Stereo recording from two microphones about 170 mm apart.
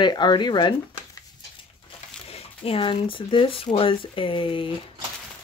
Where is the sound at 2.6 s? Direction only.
30° left (ahead or behind).